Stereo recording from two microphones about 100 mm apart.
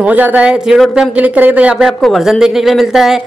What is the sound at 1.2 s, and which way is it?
Speech, 15° right (ahead or behind).